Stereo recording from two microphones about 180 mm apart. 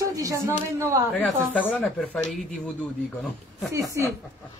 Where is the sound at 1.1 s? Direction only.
5° left (ahead or behind).